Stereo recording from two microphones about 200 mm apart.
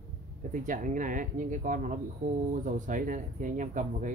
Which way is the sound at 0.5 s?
40° right (ahead or behind).